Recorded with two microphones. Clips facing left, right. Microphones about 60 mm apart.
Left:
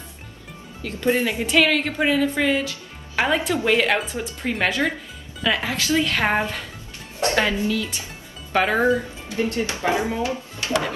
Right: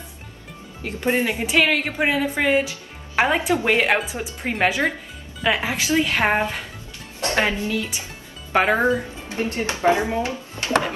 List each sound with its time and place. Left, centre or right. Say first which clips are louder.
0.8 s speech: even; right
1.4 s a woman's voice: left 1 dB; centre; by 10.9 s right